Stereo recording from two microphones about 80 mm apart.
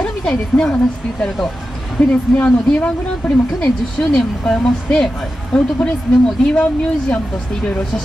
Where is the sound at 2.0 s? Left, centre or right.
Centre.